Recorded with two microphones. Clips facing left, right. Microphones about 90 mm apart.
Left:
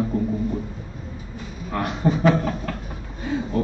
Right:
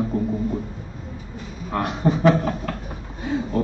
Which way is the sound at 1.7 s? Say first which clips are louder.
Right 1 dB; 30° right (ahead or behind).